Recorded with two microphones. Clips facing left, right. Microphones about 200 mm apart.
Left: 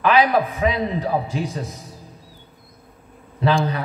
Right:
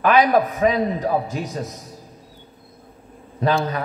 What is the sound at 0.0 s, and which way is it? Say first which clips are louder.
A man's voice: right 1 dB; 45° right (ahead or behind).